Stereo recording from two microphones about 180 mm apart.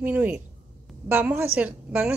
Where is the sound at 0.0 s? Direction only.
10° right (ahead or behind).